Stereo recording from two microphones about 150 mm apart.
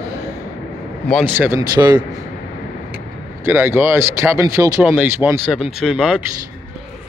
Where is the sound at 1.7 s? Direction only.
30° right (ahead or behind).